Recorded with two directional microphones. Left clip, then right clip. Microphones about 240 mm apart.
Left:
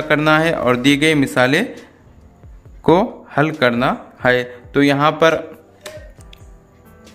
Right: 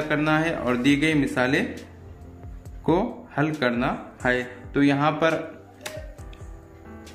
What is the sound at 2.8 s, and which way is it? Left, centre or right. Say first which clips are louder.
A man's voice: left 9 dB; left.